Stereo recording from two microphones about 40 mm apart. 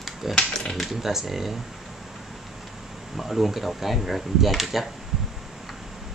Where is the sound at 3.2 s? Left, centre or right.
Centre.